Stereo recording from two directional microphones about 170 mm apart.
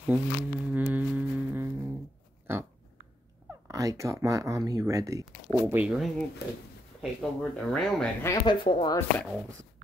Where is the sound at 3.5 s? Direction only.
20° right (ahead or behind); by 8.0 s centre (ahead or behind).